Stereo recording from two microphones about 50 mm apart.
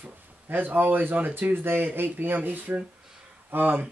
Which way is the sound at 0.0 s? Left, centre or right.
Right.